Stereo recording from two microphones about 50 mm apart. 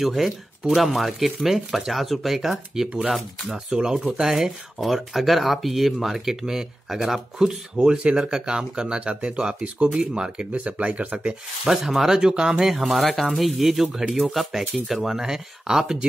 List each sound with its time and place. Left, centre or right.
0.0 s speech: centre; by 11.3 s right
11.6 s speech: centre
12.2 s speech: centre
12.6 s speech: centre